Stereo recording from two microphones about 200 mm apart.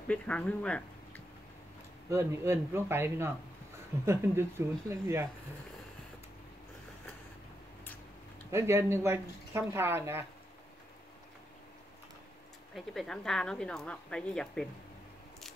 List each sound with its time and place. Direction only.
0.1 s speech: 5° left (ahead or behind)
2.0 s speech: 15° right (ahead or behind)
8.5 s speech: 15° right (ahead or behind)
12.7 s a woman's voice: centre (ahead or behind)